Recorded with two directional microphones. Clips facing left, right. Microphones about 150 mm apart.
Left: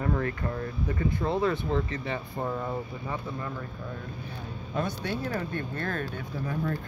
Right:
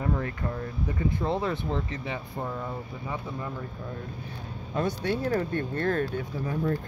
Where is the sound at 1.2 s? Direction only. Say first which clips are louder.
Left 3 dB; 25° right (ahead or behind).